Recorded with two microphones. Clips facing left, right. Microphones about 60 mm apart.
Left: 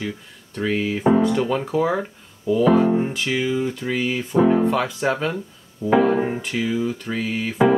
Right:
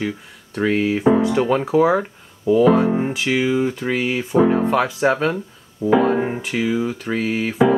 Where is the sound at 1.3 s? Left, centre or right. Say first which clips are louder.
Right 4 dB; right.